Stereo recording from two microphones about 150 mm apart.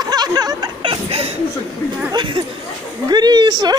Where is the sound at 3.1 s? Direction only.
30° right (ahead or behind).